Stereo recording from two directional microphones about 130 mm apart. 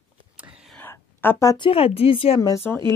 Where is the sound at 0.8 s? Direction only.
15° left (ahead or behind).